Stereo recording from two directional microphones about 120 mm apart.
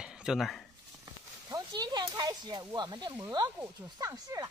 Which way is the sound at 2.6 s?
35° right (ahead or behind).